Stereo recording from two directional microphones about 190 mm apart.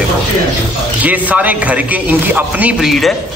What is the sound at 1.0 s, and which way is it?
A man's voice, 10° right (ahead or behind).